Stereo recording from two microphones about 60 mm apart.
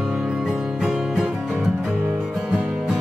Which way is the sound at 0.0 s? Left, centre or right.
Centre.